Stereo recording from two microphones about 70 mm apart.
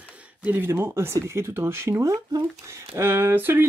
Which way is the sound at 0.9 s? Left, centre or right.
Right.